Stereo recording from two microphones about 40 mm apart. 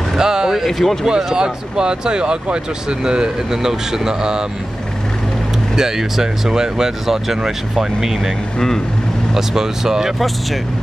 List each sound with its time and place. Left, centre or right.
0.2 s speech: centre
0.7 s speech: centre
1.0 s speech: centre
5.8 s speech: centre
8.5 s speech: centre
9.3 s speech: centre